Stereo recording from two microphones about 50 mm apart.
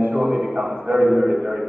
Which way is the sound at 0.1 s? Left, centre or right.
Right.